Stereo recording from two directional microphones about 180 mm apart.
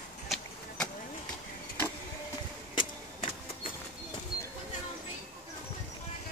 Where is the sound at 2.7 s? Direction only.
30° left (ahead or behind).